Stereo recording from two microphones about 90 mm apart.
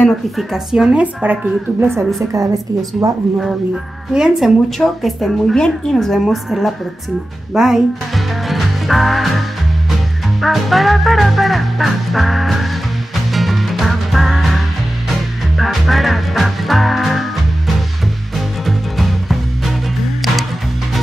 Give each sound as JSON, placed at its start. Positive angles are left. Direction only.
{"t": 0.4, "sound": "a woman's voice", "side_deg": -5}
{"t": 2.3, "sound": "a woman's voice", "side_deg": -40}
{"t": 4.1, "sound": "a woman's voice", "side_deg": -10}
{"t": 4.7, "sound": "music", "side_deg": 5}
{"t": 7.5, "sound": "speech", "side_deg": -5}
{"t": 10.4, "sound": "music", "side_deg": 0}
{"t": 18.3, "sound": "music", "side_deg": 0}